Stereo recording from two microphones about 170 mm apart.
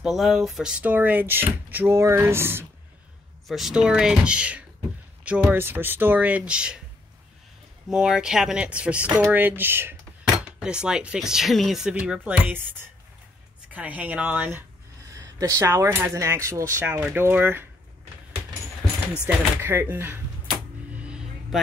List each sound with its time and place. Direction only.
0.0 s speech: centre (ahead or behind)
3.4 s speech: centre (ahead or behind)
7.9 s speech: 5° right (ahead or behind)
13.7 s speech: 10° right (ahead or behind)
19.2 s speech: 10° right (ahead or behind)
20.9 s music: 5° right (ahead or behind)